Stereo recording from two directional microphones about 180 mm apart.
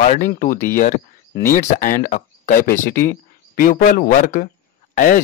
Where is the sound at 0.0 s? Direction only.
45° left (ahead or behind).